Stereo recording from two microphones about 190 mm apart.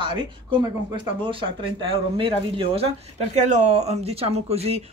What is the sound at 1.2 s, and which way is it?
Speech, 25° right (ahead or behind).